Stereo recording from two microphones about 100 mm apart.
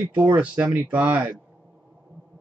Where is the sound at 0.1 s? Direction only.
15° right (ahead or behind).